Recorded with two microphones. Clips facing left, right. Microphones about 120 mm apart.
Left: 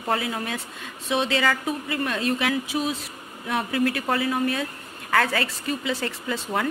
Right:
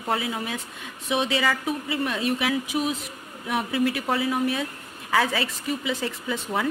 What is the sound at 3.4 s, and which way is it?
Speech, 5° right (ahead or behind).